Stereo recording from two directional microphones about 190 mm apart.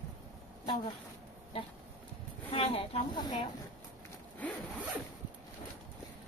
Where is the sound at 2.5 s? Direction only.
30° left (ahead or behind).